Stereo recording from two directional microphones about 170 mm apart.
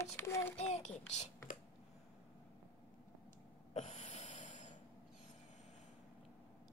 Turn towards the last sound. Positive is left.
turn(degrees=45)  # may be behind; listen again after turning